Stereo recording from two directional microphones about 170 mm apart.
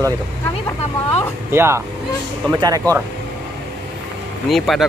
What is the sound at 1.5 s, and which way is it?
Speech, 15° right (ahead or behind).